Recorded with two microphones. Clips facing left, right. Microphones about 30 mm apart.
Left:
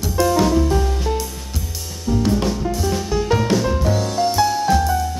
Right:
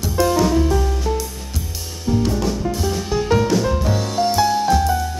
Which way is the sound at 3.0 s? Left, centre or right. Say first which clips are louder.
Right 2 dB; centre.